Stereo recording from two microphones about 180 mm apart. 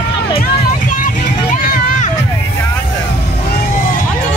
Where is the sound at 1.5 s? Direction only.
50° left (ahead or behind).